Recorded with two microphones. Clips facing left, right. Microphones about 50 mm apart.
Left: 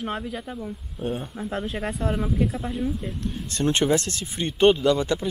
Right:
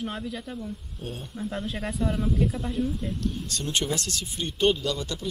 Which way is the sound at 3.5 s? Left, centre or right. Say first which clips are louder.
Left 10 dB; left.